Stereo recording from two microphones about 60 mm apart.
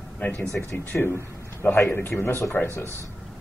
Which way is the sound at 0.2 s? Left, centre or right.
Left.